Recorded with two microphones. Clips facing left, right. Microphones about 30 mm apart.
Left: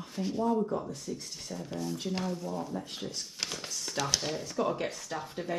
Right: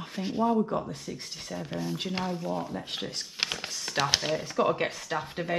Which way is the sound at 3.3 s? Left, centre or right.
Right.